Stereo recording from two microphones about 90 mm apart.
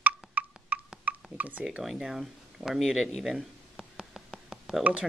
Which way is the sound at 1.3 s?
15° right (ahead or behind).